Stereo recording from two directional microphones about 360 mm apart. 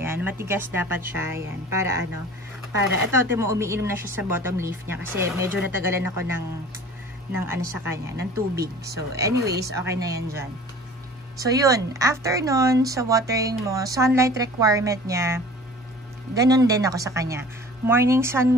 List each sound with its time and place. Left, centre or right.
0.0 s a sound: centre
0.5 s a woman's voice: centre
3.3 s a woman's voice: centre
7.3 s a woman's voice: centre
8.4 s speech: right
9.1 s a woman's voice: centre